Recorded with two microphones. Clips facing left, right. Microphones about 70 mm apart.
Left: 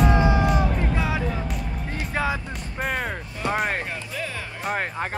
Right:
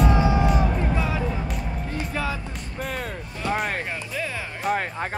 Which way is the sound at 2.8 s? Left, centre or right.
Left.